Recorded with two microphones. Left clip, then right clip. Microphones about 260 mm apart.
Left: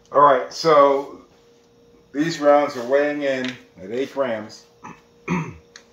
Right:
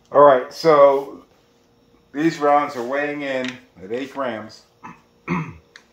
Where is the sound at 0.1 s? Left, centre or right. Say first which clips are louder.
Right 2 dB; right.